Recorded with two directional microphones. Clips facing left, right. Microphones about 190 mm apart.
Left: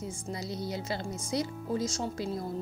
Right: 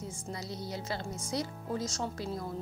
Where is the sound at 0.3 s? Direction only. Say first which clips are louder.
Left 4 dB; 15° left (ahead or behind).